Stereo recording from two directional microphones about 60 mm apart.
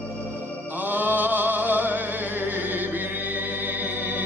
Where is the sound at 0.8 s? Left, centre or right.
Right.